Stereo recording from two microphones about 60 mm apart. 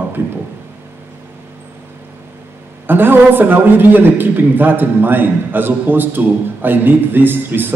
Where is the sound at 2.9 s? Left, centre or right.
Right.